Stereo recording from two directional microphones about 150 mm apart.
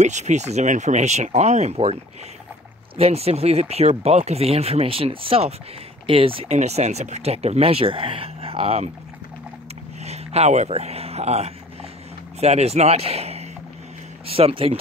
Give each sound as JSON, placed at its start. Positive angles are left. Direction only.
{"t": 0.0, "sound": "speech", "side_deg": -50}
{"t": 3.0, "sound": "speech", "side_deg": -45}
{"t": 10.0, "sound": "speech", "side_deg": -45}